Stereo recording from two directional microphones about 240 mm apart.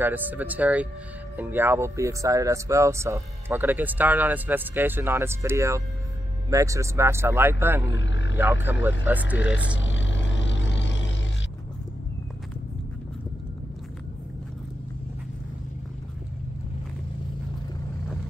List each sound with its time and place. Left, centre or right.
0.0 s speech: centre
7.8 s speech: left
8.7 s speech: centre
9.8 s vehicle: left